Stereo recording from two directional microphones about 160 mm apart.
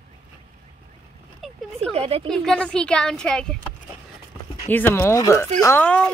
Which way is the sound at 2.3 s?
5° left (ahead or behind).